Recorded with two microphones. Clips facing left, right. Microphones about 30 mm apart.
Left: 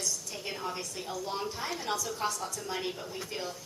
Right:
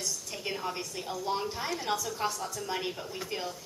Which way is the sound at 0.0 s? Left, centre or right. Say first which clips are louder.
Even; centre.